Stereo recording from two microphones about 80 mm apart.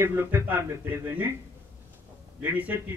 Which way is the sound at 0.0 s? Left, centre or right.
Right.